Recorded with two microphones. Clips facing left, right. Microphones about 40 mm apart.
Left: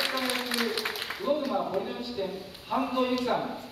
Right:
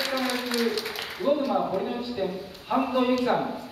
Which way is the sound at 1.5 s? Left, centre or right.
Centre.